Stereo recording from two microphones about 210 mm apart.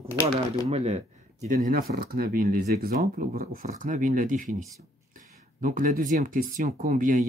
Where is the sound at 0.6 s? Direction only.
30° right (ahead or behind).